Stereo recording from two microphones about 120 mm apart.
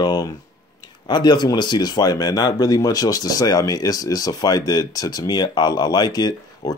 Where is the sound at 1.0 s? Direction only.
35° left (ahead or behind).